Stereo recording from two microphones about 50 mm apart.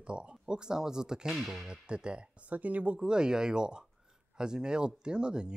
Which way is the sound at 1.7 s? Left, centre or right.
Centre.